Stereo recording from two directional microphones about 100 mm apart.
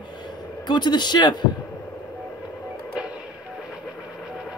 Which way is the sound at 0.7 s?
45° left (ahead or behind).